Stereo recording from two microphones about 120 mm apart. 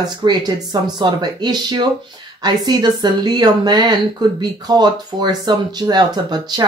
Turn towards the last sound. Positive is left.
turn(degrees=-35)  # may be behind; listen again after turning